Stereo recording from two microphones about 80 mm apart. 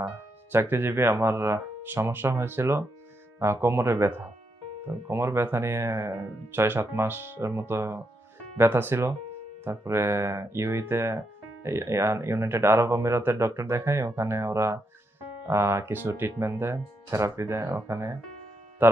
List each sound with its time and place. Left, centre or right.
0.0 s speech: right